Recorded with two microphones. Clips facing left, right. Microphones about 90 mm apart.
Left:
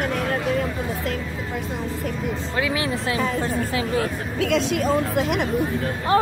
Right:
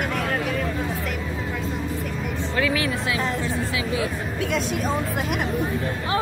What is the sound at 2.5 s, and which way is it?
Speech, 25° left (ahead or behind).